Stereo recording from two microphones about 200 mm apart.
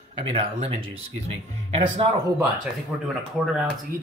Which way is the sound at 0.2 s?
30° right (ahead or behind).